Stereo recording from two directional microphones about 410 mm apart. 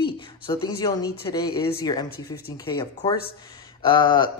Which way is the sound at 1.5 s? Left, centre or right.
Left.